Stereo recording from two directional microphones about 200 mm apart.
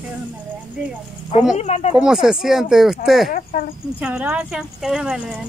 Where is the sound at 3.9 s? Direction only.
5° right (ahead or behind).